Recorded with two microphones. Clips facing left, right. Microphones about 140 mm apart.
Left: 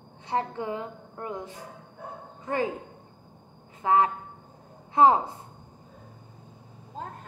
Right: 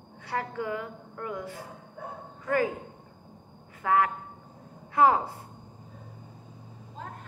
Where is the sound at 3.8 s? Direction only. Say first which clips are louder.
Left 2 dB; 25° left (ahead or behind).